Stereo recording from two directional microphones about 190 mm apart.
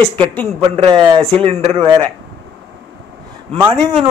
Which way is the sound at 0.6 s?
25° right (ahead or behind).